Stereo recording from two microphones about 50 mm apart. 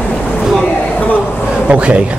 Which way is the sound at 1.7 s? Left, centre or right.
Right.